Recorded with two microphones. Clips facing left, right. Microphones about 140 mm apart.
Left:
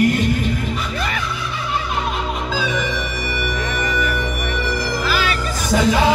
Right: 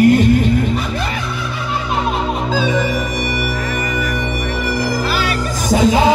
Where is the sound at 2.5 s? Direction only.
45° right (ahead or behind).